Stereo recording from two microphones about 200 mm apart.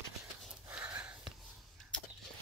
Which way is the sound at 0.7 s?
5° right (ahead or behind).